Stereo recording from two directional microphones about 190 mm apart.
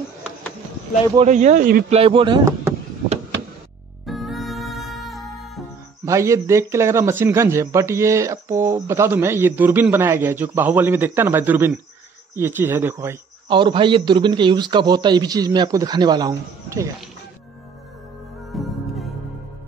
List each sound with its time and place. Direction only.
1.1 s speech: 35° right (ahead or behind)
1.9 s a man's voice: 30° right (ahead or behind)
4.0 s music: centre (ahead or behind)
6.0 s a man's voice: 15° right (ahead or behind)
13.5 s a man's voice: 25° right (ahead or behind)
18.5 s music: centre (ahead or behind)